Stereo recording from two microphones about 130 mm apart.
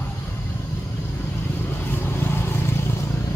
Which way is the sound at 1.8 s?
15° left (ahead or behind).